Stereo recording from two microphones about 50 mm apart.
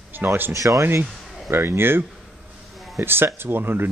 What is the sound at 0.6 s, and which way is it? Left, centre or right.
Speech, right.